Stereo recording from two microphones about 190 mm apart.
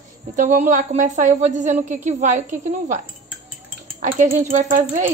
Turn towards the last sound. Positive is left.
turn(degrees=-45)  # may be behind; listen again after turning